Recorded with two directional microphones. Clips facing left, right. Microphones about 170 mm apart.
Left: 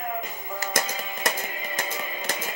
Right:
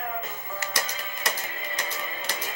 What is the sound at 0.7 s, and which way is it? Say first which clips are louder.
Music: left 4 dB; 50° left (ahead or behind).